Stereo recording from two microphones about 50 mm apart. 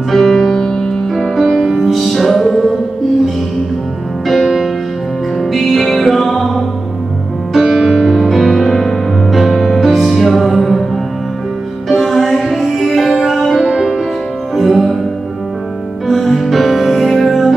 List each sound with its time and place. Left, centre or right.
0.1 s music: centre
4.3 s music: centre
7.6 s music: centre
11.9 s music: centre
16.1 s music: centre